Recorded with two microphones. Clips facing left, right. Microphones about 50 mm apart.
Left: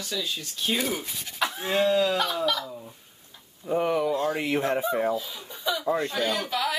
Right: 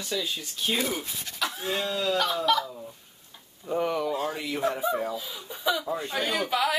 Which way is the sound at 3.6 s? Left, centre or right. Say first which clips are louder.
Left 3 dB; centre.